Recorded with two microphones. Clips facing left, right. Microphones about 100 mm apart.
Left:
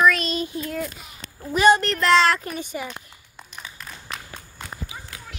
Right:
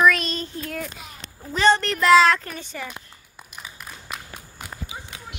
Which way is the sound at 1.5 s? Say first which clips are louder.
Left 2 dB; 10° left (ahead or behind).